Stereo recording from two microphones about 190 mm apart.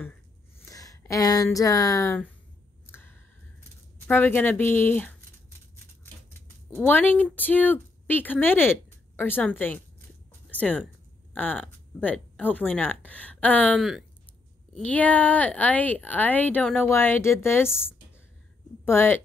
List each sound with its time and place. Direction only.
0.6 s speech: 15° left (ahead or behind)
2.9 s a sound: 10° left (ahead or behind)
4.1 s speech: 10° left (ahead or behind)
6.7 s speech: 10° left (ahead or behind)